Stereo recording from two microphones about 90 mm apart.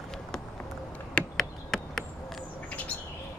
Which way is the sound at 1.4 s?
5° left (ahead or behind).